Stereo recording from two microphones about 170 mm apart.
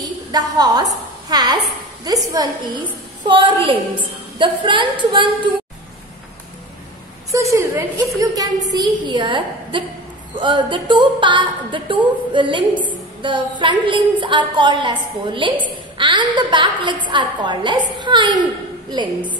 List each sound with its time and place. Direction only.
0.3 s a woman's voice: 25° right (ahead or behind)
7.2 s a woman's voice: 20° right (ahead or behind)